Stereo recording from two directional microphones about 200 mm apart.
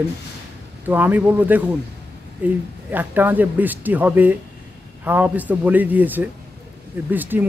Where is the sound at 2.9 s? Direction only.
10° right (ahead or behind).